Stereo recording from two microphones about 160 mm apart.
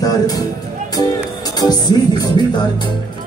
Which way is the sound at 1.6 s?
25° left (ahead or behind).